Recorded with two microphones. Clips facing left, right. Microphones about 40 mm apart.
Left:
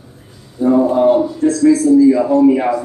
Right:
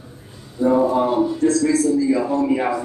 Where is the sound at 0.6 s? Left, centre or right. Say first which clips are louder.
Left 3 dB; left.